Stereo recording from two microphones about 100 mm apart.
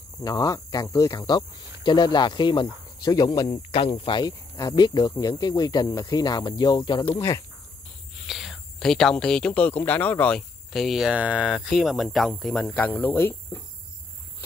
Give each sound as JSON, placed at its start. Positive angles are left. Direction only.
{"t": 0.2, "sound": "speech", "side_deg": 40}
{"t": 3.5, "sound": "speech", "side_deg": 65}
{"t": 4.2, "sound": "speech", "side_deg": 40}
{"t": 8.3, "sound": "speech", "side_deg": 0}
{"t": 10.7, "sound": "speech", "side_deg": 0}
{"t": 12.7, "sound": "speech", "side_deg": 15}